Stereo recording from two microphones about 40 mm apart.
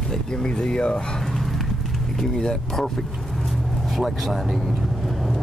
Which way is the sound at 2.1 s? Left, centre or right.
Centre.